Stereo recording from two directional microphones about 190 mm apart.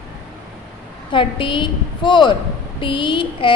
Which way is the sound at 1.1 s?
25° left (ahead or behind).